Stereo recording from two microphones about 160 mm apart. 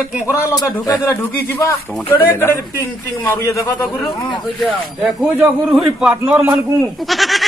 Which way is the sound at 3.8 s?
5° left (ahead or behind).